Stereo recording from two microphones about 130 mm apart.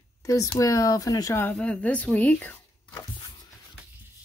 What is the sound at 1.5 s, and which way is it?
Speech, 10° left (ahead or behind).